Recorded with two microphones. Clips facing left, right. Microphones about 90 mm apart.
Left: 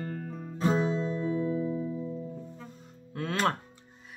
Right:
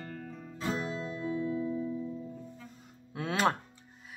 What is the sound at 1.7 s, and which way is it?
Music, 20° left (ahead or behind).